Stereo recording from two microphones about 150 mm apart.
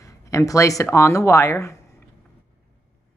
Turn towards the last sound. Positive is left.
turn(degrees=20)  # may be behind; listen again after turning